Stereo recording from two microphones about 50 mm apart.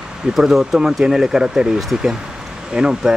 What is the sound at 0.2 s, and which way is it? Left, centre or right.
Speech, centre.